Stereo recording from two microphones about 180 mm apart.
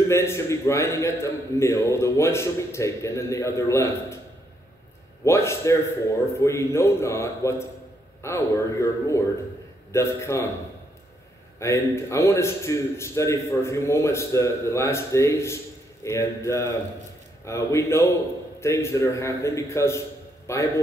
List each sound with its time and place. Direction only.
0.1 s a man's voice: 15° left (ahead or behind)
5.2 s a man's voice: 15° left (ahead or behind)
11.6 s a man's voice: 15° left (ahead or behind)